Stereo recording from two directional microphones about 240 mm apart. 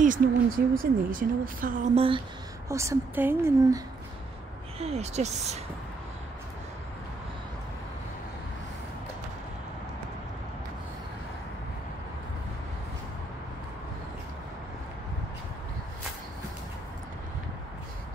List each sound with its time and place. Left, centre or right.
0.0 s speech: right
2.0 s a woman's voice: right
4.7 s speech: right